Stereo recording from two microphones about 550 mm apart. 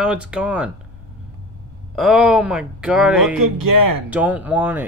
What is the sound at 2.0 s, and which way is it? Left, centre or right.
Speech, centre.